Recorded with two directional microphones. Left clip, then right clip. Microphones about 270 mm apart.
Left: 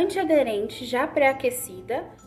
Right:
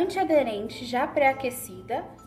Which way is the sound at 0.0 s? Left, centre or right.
Centre.